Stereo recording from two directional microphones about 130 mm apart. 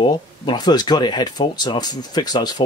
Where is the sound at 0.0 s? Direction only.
35° left (ahead or behind).